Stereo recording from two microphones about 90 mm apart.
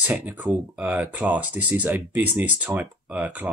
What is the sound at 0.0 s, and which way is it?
Speech, 20° right (ahead or behind).